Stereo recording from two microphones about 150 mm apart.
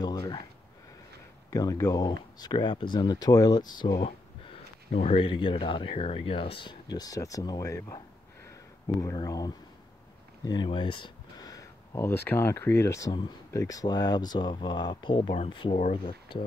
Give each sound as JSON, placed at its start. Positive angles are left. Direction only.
{"t": 0.0, "sound": "a sound", "side_deg": 30}
{"t": 1.5, "sound": "speech", "side_deg": 25}
{"t": 15.7, "sound": "speech", "side_deg": 50}
{"t": 16.3, "sound": "speech", "side_deg": 35}